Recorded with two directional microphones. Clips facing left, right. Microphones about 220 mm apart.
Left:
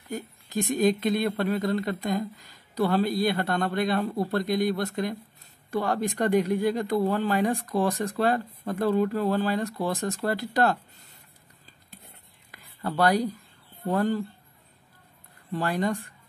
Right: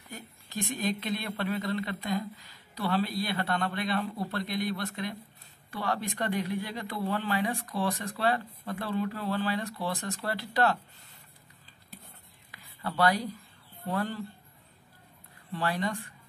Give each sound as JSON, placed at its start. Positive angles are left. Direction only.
{"t": 0.1, "sound": "speech", "side_deg": 45}
{"t": 12.4, "sound": "whispering", "side_deg": 45}
{"t": 13.8, "sound": "speech", "side_deg": 45}
{"t": 15.5, "sound": "speech", "side_deg": 45}